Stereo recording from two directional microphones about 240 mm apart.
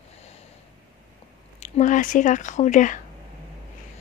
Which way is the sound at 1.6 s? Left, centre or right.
Left.